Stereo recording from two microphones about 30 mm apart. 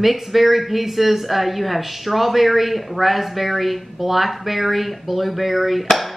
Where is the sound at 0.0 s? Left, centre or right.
Centre.